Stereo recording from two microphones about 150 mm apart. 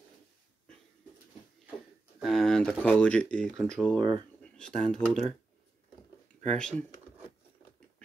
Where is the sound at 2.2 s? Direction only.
Centre (ahead or behind).